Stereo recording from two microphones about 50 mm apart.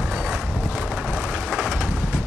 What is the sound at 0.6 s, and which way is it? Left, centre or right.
Vehicle, right.